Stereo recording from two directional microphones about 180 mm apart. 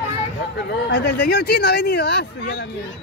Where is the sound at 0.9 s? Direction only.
65° left (ahead or behind).